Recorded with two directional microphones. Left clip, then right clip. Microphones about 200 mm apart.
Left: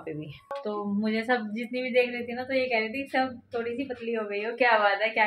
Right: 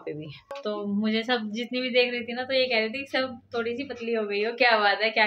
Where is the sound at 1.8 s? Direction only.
10° right (ahead or behind).